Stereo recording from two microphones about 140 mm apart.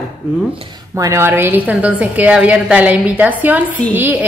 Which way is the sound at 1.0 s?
20° right (ahead or behind).